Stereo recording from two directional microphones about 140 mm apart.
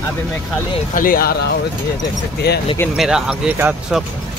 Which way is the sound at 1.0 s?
90° left.